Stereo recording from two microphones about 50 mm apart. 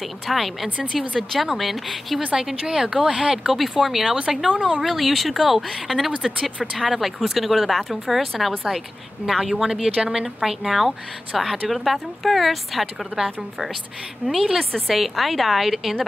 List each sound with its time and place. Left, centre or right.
0.3 s a woman's voice: centre
2.3 s speech: centre
3.4 s a woman's voice: centre
4.8 s a woman's voice: centre